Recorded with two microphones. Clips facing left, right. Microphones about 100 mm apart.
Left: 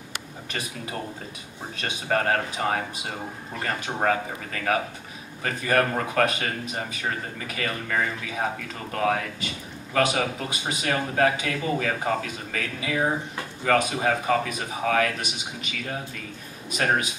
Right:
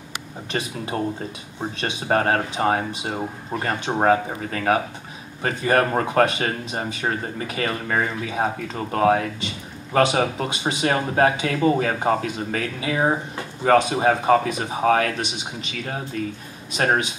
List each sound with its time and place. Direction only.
0.5 s speech: 30° right (ahead or behind)
16.7 s speech: 30° right (ahead or behind)